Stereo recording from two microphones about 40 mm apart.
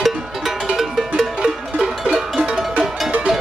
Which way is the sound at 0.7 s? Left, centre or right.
Centre.